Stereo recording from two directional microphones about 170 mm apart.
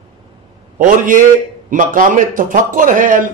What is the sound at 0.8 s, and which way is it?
A man's voice, 50° right (ahead or behind).